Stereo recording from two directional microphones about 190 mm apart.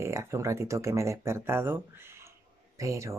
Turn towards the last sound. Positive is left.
turn(degrees=-15)  # may be behind; listen again after turning